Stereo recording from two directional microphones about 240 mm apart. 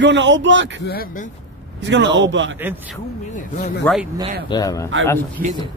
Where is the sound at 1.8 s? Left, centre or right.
Right.